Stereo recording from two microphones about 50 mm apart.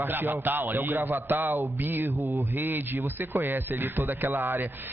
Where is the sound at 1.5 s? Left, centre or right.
Right.